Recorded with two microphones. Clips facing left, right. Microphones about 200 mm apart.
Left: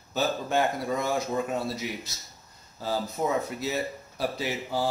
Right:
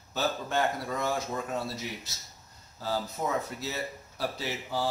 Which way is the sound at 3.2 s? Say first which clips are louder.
Left 4 dB; 20° left (ahead or behind).